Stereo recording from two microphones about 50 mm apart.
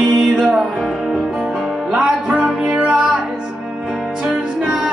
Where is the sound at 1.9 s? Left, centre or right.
Centre.